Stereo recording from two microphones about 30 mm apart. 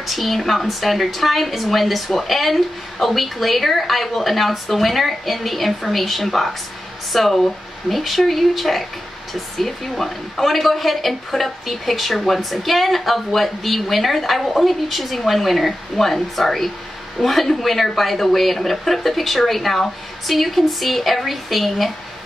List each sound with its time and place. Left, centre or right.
0.0 s a woman's voice: centre